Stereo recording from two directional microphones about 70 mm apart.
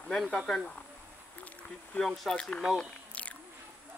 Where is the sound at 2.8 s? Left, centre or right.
Centre.